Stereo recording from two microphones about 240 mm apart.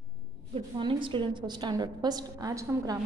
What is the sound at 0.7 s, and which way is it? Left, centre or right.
A woman's voice, centre.